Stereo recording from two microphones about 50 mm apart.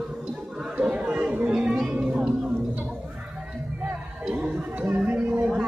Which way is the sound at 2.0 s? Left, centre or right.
Centre.